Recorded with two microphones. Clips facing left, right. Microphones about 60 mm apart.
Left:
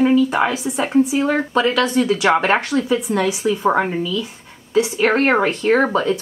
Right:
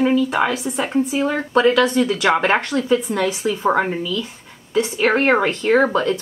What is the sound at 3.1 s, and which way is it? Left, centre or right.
Speech, left.